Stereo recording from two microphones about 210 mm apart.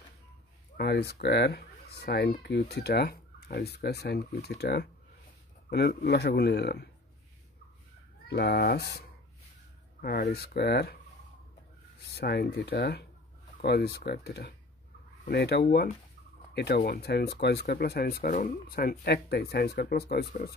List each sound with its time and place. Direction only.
0.7 s speech: 50° left (ahead or behind)
8.3 s speech: 50° left (ahead or behind)
10.0 s speech: 45° left (ahead or behind)
12.0 s speech: 55° left (ahead or behind)